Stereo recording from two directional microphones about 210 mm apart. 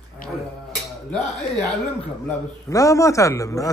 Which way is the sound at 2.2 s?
15° left (ahead or behind).